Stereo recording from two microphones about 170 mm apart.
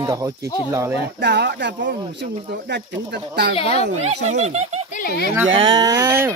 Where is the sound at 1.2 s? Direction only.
85° right.